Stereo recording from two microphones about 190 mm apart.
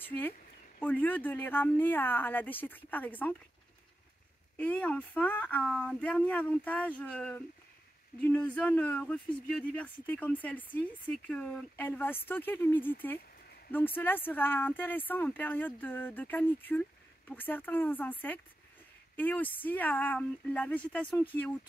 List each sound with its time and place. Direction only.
0.0 s speech: 10° left (ahead or behind)
4.6 s speech: 5° left (ahead or behind)